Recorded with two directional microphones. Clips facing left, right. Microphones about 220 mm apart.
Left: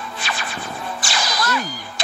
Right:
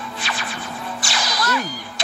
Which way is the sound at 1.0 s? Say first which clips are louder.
Left 2 dB; 45° left (ahead or behind).